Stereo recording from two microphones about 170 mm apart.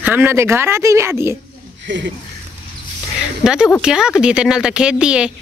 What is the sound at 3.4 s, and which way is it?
Speech, 5° right (ahead or behind).